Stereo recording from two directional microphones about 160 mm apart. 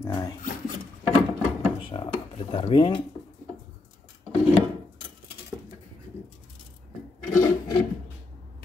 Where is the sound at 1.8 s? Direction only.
35° left (ahead or behind).